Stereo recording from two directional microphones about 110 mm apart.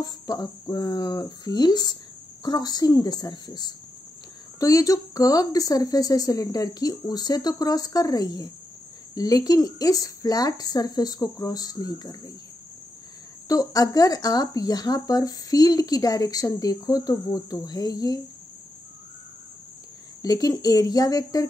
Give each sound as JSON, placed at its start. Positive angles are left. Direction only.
{"t": 0.0, "sound": "speech", "side_deg": 35}
{"t": 13.5, "sound": "speech", "side_deg": 35}
{"t": 20.2, "sound": "speech", "side_deg": 35}